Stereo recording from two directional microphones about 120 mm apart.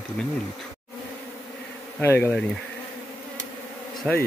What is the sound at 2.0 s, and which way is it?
Bee, 20° left (ahead or behind).